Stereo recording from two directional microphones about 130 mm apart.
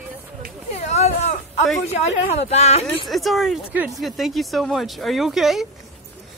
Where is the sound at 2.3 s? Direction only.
55° left (ahead or behind).